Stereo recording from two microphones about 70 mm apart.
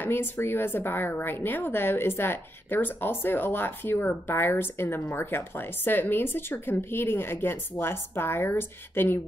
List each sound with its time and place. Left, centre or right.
0.0 s speech: left